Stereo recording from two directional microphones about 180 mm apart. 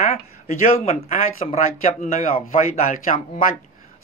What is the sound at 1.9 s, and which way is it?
Speech, 50° left (ahead or behind).